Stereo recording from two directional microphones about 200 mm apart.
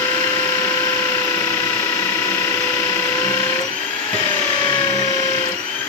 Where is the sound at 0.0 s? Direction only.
10° left (ahead or behind).